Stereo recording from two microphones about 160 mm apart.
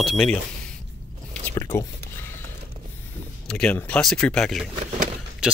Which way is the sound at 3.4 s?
5° left (ahead or behind).